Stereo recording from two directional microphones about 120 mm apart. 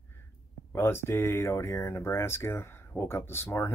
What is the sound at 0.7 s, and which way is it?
Speech, 20° left (ahead or behind).